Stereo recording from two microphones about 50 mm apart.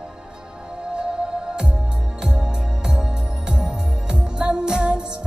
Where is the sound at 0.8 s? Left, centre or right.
Centre.